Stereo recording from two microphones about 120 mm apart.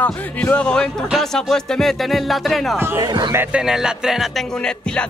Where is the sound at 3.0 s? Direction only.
35° right (ahead or behind).